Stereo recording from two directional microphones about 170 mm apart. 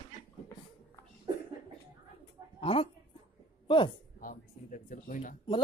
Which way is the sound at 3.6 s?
30° left (ahead or behind).